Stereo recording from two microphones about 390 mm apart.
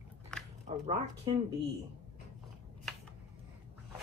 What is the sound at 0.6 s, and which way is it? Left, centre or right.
Speech, centre.